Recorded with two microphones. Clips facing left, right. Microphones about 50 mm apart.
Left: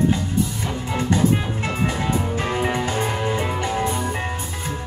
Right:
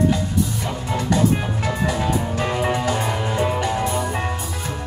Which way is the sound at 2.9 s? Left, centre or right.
Left.